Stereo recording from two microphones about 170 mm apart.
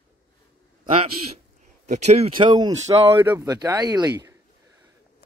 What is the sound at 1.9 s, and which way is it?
Speech, 40° right (ahead or behind).